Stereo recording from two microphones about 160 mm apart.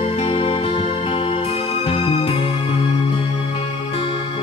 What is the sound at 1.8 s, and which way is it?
Music, 35° left (ahead or behind).